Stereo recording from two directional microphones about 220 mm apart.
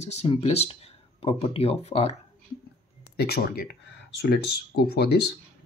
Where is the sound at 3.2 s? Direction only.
45° left (ahead or behind).